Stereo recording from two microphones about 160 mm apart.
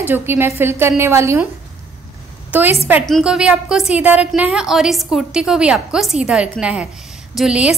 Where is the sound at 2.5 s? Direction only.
10° right (ahead or behind).